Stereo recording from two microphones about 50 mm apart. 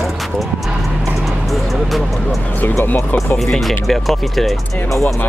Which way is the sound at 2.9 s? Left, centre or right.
Left.